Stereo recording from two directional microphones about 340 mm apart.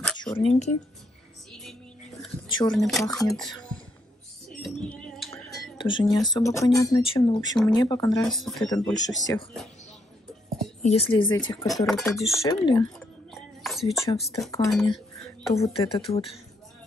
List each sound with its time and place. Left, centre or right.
0.4 s speech: centre
2.2 s whispering: centre
2.7 s speech: centre
4.5 s a sound: centre
6.5 s speech: centre
8.6 s speech: centre
10.8 s speech: centre
11.6 s speech: centre
12.4 s speech: centre
13.3 s a sound: centre
14.3 s speech: centre
15.5 s speech: centre